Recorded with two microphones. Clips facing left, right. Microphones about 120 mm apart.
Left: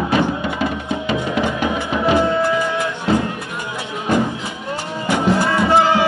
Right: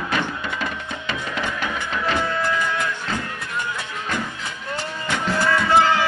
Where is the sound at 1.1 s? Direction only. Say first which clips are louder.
Left 7 dB; 15° left (ahead or behind).